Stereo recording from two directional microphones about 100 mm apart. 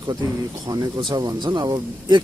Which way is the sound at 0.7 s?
35° right (ahead or behind).